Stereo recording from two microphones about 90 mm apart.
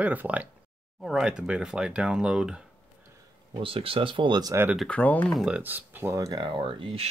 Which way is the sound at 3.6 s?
90° right.